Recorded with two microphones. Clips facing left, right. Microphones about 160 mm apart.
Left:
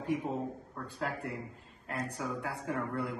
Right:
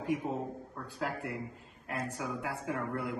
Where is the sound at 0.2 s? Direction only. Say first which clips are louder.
Even; 15° right (ahead or behind).